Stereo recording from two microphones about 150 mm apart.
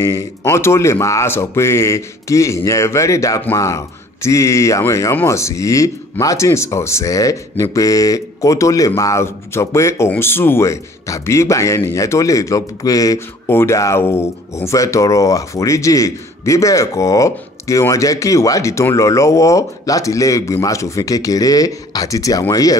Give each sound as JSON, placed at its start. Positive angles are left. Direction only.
{"t": 0.0, "sound": "speech", "side_deg": 20}